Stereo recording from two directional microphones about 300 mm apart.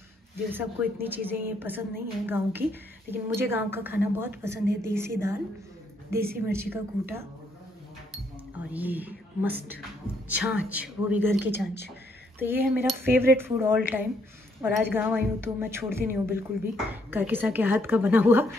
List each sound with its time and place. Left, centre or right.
0.5 s a woman's voice: centre
6.4 s a woman's voice: centre
8.7 s speech: centre
11.3 s speech: left
12.4 s a woman's voice: centre